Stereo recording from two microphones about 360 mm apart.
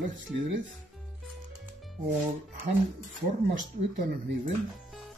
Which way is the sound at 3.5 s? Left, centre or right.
Right.